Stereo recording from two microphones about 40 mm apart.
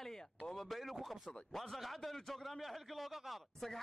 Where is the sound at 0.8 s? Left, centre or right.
Centre.